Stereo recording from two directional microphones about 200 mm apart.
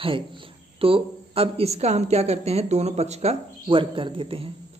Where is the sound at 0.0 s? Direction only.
25° right (ahead or behind).